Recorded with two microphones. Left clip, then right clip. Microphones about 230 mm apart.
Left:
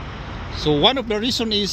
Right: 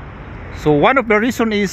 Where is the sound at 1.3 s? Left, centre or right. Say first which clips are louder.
Right 4 dB; right.